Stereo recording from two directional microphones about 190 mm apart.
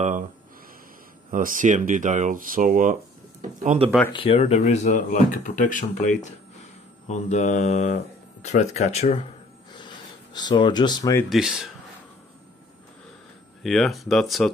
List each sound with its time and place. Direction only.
1.3 s speech: 45° right (ahead or behind)
4.1 s speech: 30° left (ahead or behind)
9.7 s a sound: 25° left (ahead or behind)
11.2 s speech: centre (ahead or behind)
13.6 s speech: centre (ahead or behind)